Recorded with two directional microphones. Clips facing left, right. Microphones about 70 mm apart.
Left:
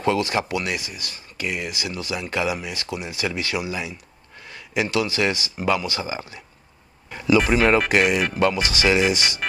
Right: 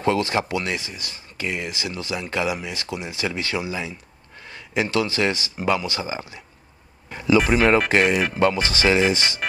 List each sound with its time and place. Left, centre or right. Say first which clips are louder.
0.0 s speech: even; right
7.1 s a sound: even; right
7.3 s speech: right 1 dB; centre
8.4 s speech: right 1 dB; right